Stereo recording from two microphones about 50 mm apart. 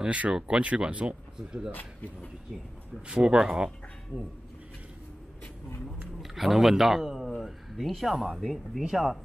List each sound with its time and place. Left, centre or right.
0.1 s speech: right
1.7 s speech: left
3.1 s speech: centre
6.2 s speech: centre